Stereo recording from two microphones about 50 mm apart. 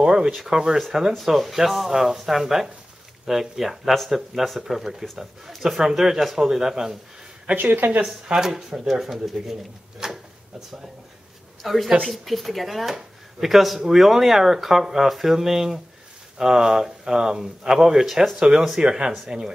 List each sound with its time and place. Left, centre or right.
0.0 s speech: centre
7.5 s speech: right
8.0 s speech: centre
11.6 s speech: centre